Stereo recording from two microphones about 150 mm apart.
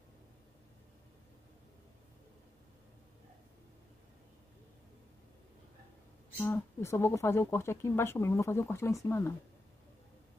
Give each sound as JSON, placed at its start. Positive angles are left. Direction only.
{"t": 6.3, "sound": "speech", "side_deg": 15}